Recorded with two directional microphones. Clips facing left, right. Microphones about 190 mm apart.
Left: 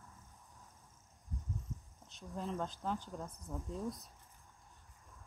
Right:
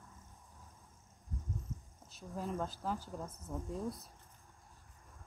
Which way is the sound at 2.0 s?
5° right (ahead or behind).